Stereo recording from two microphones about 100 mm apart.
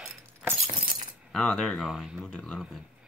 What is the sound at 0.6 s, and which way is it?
Glass, 55° right (ahead or behind).